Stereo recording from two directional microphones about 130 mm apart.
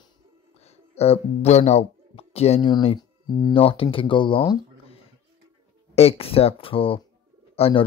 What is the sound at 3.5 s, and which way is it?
Speech, 45° left (ahead or behind).